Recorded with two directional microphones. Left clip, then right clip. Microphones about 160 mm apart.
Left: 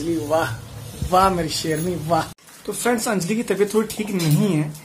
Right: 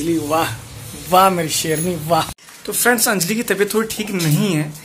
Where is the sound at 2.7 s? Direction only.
Centre (ahead or behind).